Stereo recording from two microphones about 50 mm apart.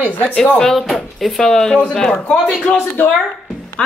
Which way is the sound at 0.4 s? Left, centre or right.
Centre.